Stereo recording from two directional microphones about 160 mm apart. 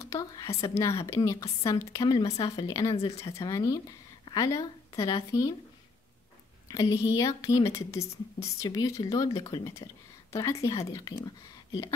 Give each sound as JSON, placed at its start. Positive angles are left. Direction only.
{"t": 0.0, "sound": "a woman's voice", "side_deg": 20}
{"t": 2.9, "sound": "speech", "side_deg": 40}
{"t": 3.4, "sound": "a woman's voice", "side_deg": 20}
{"t": 6.7, "sound": "a woman's voice", "side_deg": 20}